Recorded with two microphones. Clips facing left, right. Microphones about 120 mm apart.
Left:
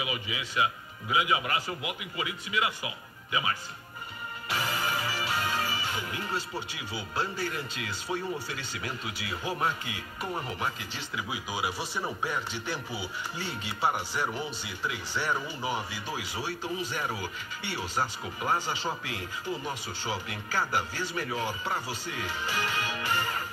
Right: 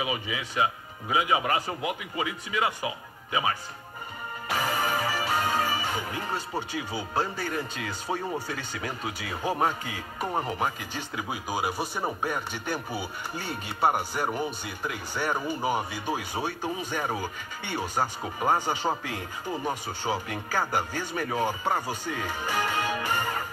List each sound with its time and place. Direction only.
0.0 s a man's voice: 35° right (ahead or behind)
4.6 s a man's voice: 45° right (ahead or behind)